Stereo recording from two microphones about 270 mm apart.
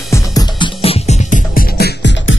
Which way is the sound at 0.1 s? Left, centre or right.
Centre.